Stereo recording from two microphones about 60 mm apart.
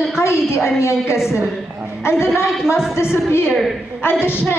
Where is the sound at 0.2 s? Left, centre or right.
Left.